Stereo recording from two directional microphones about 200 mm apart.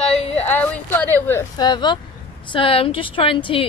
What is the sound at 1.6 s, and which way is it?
Speech, 20° left (ahead or behind).